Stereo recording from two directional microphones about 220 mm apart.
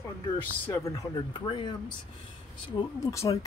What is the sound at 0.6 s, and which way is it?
Speech, 15° left (ahead or behind).